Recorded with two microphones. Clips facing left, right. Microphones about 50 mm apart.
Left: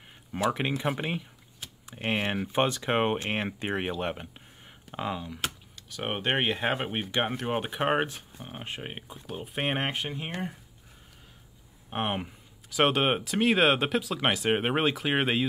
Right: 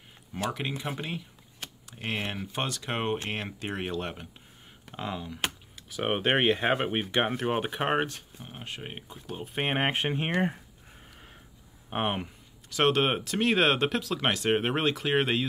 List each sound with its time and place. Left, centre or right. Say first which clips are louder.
0.3 s speech: left 4 dB; left; by 5.4 s centre
5.8 s speech: right 4 dB; centre
9.9 s speech: right 6 dB; right
11.9 s speech: right 1 dB; centre